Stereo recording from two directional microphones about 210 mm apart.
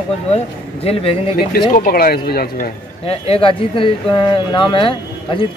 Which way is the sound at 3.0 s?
25° left (ahead or behind).